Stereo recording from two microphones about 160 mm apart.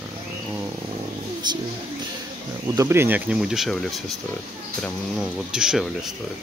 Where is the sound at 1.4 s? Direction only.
25° right (ahead or behind).